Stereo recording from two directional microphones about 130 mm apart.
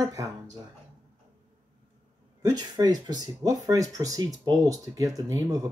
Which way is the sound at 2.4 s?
30° right (ahead or behind).